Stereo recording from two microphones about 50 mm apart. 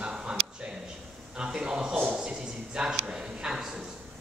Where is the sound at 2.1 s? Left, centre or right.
Centre.